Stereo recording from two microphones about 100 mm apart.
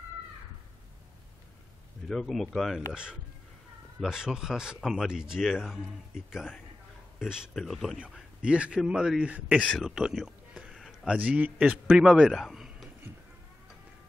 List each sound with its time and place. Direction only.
2.0 s speech: 5° left (ahead or behind)
2.9 s speech: 10° right (ahead or behind)
9.8 s a sound: 5° right (ahead or behind)
11.1 s speech: 15° right (ahead or behind)